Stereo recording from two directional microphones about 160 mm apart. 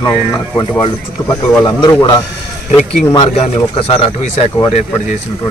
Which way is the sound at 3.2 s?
40° left (ahead or behind).